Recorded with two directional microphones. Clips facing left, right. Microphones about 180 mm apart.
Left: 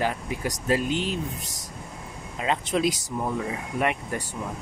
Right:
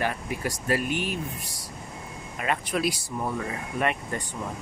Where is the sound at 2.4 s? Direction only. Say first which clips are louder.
Left 3 dB; 20° left (ahead or behind).